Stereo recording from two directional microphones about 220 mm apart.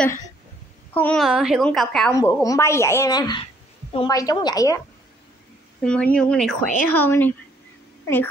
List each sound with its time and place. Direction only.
0.9 s a woman's voice: 5° left (ahead or behind)
2.1 s a woman's voice: 15° left (ahead or behind)
5.8 s a woman's voice: 5° left (ahead or behind)